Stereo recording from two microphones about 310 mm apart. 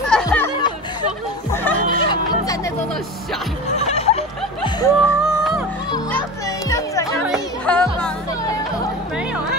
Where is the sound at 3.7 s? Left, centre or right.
Centre.